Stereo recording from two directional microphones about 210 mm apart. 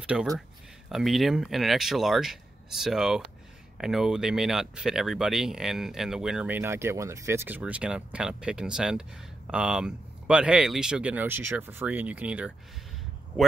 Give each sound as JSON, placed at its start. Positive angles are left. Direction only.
{"t": 0.0, "sound": "speech", "side_deg": -5}